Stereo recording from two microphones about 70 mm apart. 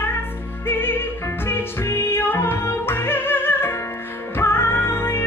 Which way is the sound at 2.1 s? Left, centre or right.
Left.